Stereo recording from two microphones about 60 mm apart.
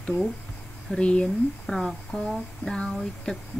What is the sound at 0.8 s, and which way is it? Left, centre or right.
Speech, centre.